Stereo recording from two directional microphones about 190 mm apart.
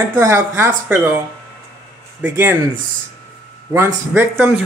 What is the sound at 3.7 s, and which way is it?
Speech, 10° right (ahead or behind).